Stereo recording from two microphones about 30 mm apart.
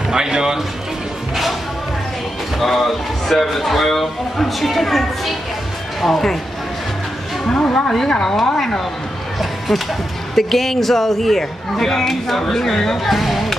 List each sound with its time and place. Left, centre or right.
0.1 s speech: right
2.6 s a man's voice: centre
7.4 s a woman's voice: left
10.3 s a man's voice: centre